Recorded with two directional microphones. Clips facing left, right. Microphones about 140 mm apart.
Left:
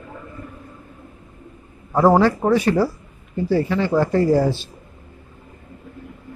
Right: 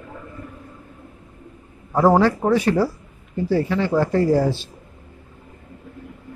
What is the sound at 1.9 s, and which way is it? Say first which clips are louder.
A man's voice: left 1 dB; 20° left (ahead or behind).